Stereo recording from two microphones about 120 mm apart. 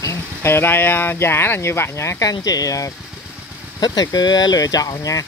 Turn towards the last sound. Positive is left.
turn(degrees=30)  # may be behind; listen again after turning